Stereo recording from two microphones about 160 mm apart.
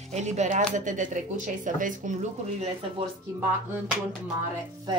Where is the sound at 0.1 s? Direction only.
45° right (ahead or behind).